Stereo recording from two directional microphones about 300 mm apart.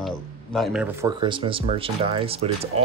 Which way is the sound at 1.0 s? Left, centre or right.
Centre.